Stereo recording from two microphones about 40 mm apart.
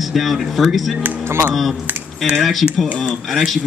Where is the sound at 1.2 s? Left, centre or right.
Right.